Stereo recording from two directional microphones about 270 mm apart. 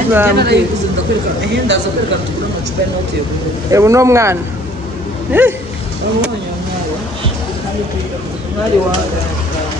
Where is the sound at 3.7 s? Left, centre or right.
Centre.